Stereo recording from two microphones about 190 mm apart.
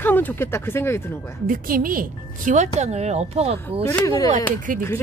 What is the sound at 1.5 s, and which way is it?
Speech, 45° right (ahead or behind).